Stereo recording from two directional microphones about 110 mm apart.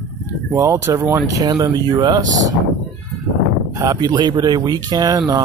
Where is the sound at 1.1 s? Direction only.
35° right (ahead or behind).